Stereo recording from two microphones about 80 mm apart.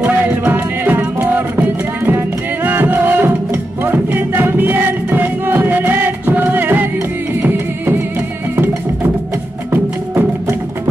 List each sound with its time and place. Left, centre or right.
0.0 s music: right